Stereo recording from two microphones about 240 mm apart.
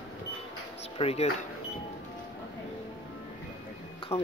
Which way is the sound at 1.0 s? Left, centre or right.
Left.